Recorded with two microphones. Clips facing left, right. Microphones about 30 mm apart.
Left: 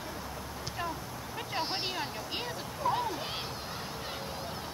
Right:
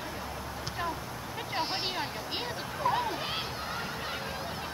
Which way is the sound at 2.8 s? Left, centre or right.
Right.